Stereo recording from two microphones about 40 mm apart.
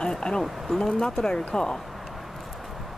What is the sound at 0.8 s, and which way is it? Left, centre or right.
Speech, centre.